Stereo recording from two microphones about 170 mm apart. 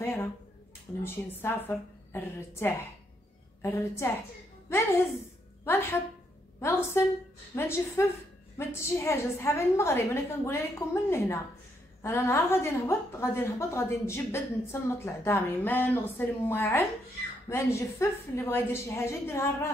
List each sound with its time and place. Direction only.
0.0 s a woman's voice: 15° left (ahead or behind)